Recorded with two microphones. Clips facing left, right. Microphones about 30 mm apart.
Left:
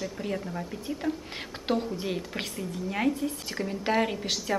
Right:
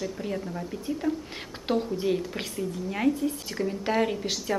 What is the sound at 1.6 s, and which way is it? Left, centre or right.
Speech, centre.